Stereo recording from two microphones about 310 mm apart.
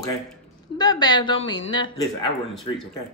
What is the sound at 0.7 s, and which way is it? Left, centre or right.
Speech, centre.